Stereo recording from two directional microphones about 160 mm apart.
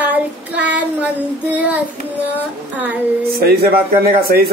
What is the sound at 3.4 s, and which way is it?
Speech, 75° right (ahead or behind).